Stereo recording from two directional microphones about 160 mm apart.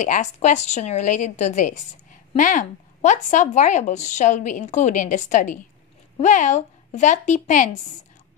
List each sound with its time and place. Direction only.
0.0 s speech: 45° left (ahead or behind)